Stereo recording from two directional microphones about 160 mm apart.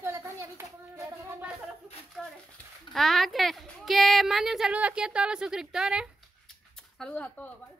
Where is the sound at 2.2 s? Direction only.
5° right (ahead or behind).